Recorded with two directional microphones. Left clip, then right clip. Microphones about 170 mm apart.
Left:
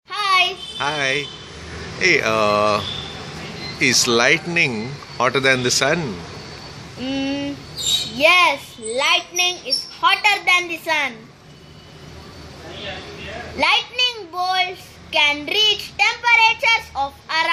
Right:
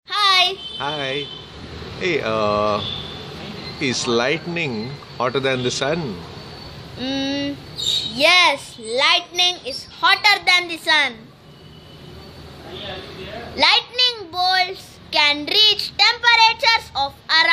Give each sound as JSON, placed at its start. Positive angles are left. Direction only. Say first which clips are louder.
{"t": 0.1, "sound": "a sound", "louder": "right 1 dB", "side_deg": -15}
{"t": 0.7, "sound": "speech", "louder": "left 3 dB", "side_deg": 0}
{"t": 3.8, "sound": "speech", "louder": "left 4 dB", "side_deg": 0}
{"t": 7.0, "sound": "a sound", "louder": "right 1 dB", "side_deg": -20}
{"t": 8.2, "sound": "a child's voice", "louder": "even", "side_deg": -15}
{"t": 13.6, "sound": "a child's voice", "louder": "right 2 dB", "side_deg": -15}